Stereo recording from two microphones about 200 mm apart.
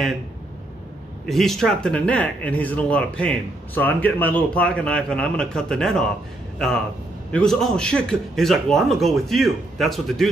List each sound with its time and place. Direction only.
1.2 s speech: centre (ahead or behind)
7.3 s speech: 5° left (ahead or behind)